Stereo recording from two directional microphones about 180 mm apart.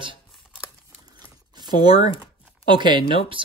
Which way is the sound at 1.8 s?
25° right (ahead or behind).